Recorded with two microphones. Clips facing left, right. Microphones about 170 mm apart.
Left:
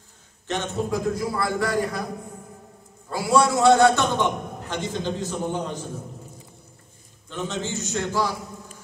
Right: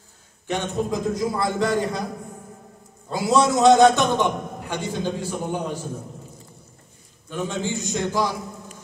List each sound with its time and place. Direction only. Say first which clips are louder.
0.5 s a man's voice: right 1 dB; 15° right (ahead or behind)
3.1 s a man's voice: right 1 dB; 20° right (ahead or behind)
7.2 s a man's voice: right 3 dB; 10° right (ahead or behind)